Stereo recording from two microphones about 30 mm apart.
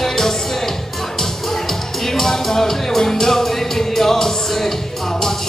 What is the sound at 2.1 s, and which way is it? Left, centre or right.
Music, centre.